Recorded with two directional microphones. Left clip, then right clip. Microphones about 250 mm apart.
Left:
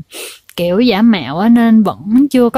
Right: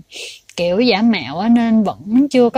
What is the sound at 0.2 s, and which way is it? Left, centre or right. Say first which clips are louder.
A woman's voice: left 2 dB; left.